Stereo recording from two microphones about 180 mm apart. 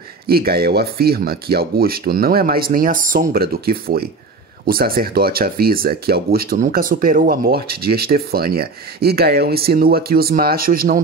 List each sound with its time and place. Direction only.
0.3 s speech: 60° right (ahead or behind)